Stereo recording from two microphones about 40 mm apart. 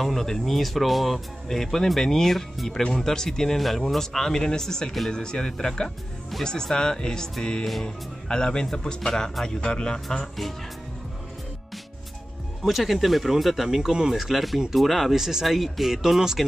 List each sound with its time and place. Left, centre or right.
0.0 s speech: centre
10.0 s speech: centre
12.6 s speech: centre